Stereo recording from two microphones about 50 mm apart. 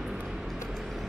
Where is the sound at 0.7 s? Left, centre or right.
Centre.